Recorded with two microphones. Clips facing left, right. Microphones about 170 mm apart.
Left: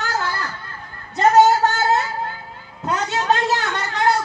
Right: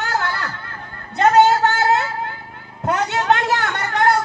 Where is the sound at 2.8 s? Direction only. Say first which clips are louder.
Right 3 dB; 60° right (ahead or behind).